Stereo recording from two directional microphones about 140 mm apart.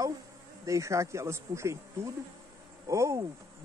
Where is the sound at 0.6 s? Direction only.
20° right (ahead or behind).